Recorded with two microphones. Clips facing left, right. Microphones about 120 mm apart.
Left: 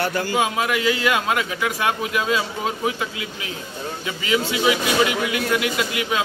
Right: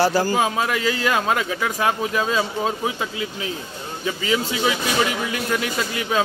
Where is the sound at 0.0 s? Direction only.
35° right (ahead or behind).